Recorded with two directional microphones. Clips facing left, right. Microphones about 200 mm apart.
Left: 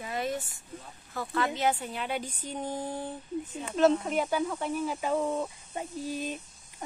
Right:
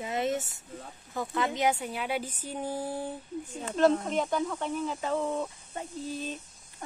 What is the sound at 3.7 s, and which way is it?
Speech, centre (ahead or behind).